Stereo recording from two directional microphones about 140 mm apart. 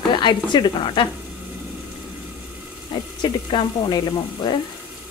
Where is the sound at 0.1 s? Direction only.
35° left (ahead or behind).